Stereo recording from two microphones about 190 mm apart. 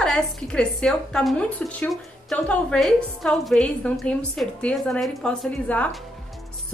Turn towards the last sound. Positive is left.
turn(degrees=5)  # may be behind; listen again after turning